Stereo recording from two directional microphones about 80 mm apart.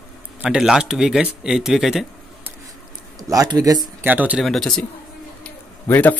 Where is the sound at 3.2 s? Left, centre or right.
Right.